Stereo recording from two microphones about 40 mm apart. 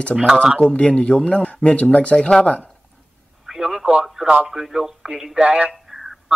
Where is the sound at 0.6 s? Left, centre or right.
Left.